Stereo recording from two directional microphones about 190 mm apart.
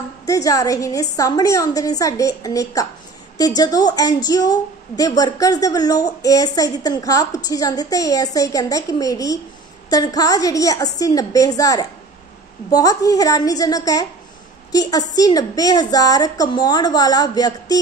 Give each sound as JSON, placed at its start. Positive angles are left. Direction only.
{"t": 0.3, "sound": "a woman's voice", "side_deg": 15}